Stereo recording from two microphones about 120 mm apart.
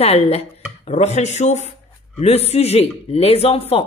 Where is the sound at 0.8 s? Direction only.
70° left (ahead or behind).